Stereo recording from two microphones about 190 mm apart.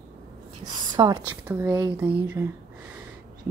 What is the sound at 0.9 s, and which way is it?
Speech, 20° right (ahead or behind).